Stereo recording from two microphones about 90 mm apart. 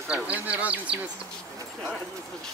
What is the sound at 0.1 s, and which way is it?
Speech, 15° right (ahead or behind).